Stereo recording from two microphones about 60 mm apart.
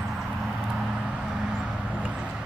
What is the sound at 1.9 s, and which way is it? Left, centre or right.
Vehicle, centre.